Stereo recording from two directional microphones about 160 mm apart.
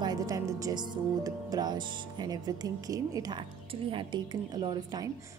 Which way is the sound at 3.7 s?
35° right (ahead or behind).